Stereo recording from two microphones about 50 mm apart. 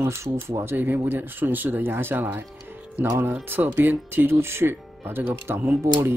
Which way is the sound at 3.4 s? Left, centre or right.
Right.